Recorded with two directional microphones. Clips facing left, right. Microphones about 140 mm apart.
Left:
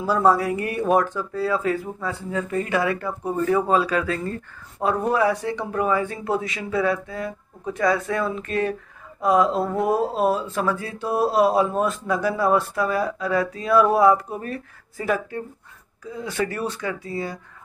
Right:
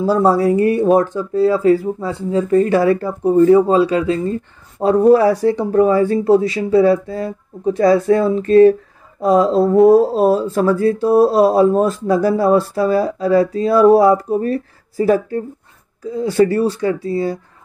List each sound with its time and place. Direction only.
0.0 s speech: 30° right (ahead or behind)
4.8 s speech: 35° right (ahead or behind)